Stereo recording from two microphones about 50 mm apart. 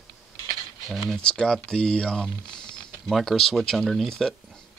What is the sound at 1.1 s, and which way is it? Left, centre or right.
Speech, centre.